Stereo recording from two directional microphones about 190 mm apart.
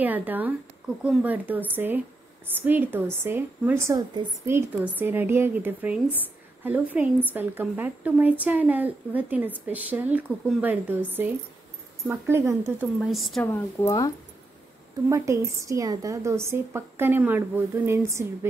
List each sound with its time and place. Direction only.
0.0 s a woman's voice: 10° right (ahead or behind)
13.0 s a woman's voice: centre (ahead or behind)
13.5 s speech: 15° left (ahead or behind)
15.0 s a woman's voice: 15° right (ahead or behind)